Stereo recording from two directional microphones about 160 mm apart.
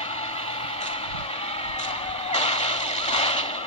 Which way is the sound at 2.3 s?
45° left (ahead or behind).